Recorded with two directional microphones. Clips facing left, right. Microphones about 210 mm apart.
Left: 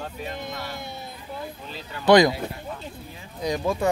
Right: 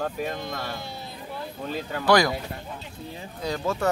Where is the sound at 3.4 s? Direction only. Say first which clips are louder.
Left 3 dB; 15° left (ahead or behind).